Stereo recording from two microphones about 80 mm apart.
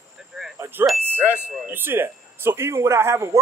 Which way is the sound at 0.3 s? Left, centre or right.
Centre.